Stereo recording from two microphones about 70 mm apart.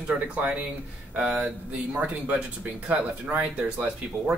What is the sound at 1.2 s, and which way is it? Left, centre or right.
Mantra, centre.